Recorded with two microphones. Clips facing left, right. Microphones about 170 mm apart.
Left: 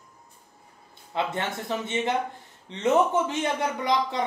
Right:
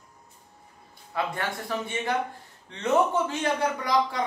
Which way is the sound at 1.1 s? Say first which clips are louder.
Left 1 dB; 25° left (ahead or behind).